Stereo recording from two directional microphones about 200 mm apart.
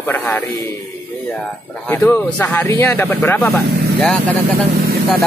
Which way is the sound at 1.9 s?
10° left (ahead or behind).